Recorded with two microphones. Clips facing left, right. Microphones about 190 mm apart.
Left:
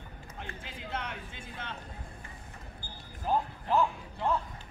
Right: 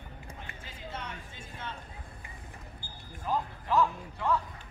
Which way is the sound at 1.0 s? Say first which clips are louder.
Left 2 dB; 65° left (ahead or behind).